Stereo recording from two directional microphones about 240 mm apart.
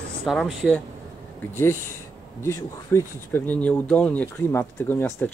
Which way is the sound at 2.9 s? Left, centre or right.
Centre.